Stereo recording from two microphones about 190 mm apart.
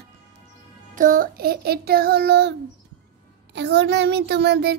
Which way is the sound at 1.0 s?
45° right (ahead or behind).